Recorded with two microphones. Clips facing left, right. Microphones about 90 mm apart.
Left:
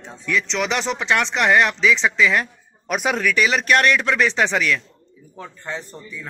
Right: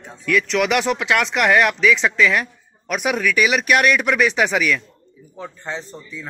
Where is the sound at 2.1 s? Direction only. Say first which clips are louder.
Right 1 dB; 10° left (ahead or behind).